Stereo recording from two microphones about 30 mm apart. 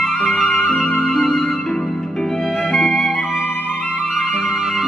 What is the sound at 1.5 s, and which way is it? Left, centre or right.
Music, left.